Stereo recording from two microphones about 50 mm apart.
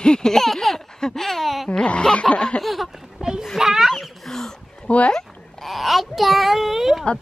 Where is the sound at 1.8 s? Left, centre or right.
Centre.